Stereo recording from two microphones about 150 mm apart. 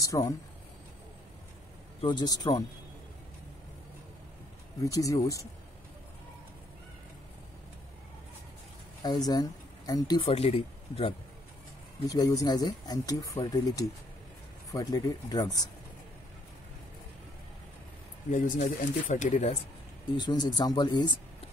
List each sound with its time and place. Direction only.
0.0 s speech: 20° left (ahead or behind)
2.0 s speech: 30° left (ahead or behind)
4.8 s speech: 20° left (ahead or behind)
9.0 s speech: 25° left (ahead or behind)
12.1 s speech: 25° left (ahead or behind)
18.3 s speech: 55° left (ahead or behind)
20.2 s speech: 30° left (ahead or behind)